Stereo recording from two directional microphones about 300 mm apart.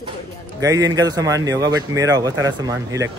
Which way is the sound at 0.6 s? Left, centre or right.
Centre.